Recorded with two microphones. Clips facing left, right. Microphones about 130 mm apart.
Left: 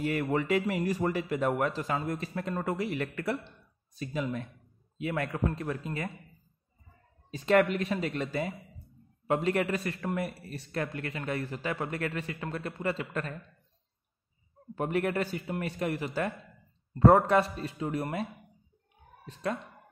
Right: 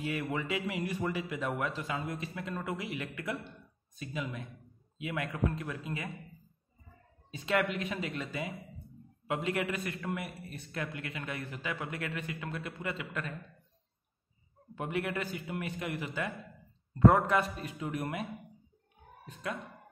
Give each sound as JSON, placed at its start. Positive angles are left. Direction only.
{"t": 0.0, "sound": "a man's voice", "side_deg": 40}
{"t": 7.2, "sound": "a man's voice", "side_deg": 40}
{"t": 14.8, "sound": "a man's voice", "side_deg": 40}